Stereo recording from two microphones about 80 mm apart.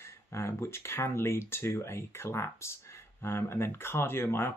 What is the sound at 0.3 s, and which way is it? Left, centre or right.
Speech, left.